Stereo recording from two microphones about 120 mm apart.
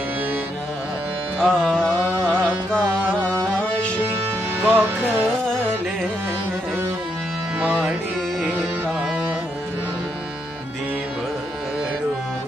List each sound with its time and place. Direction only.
1.4 s music: 5° left (ahead or behind)
2.0 s music: 15° right (ahead or behind)
4.6 s music: 15° right (ahead or behind)